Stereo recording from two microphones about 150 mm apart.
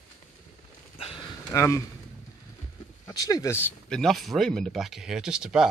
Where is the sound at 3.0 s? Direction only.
25° left (ahead or behind).